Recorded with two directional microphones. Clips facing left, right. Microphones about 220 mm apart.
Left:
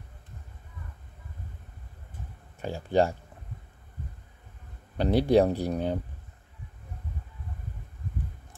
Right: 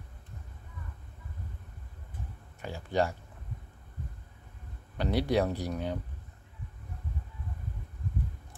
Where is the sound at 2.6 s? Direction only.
30° left (ahead or behind).